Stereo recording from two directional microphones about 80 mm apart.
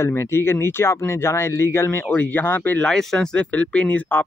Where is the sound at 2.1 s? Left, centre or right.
Left.